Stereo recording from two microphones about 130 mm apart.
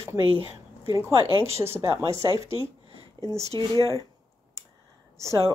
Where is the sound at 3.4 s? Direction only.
25° left (ahead or behind).